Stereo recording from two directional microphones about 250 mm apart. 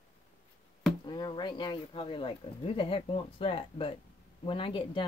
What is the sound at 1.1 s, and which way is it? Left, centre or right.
Speech, centre.